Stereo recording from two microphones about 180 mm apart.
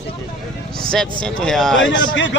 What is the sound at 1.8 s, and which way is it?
Speech, 85° left.